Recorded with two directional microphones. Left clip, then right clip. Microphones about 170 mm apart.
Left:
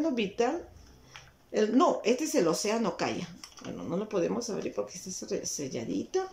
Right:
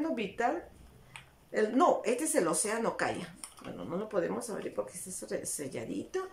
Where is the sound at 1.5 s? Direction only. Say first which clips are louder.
Left 1 dB; 10° left (ahead or behind).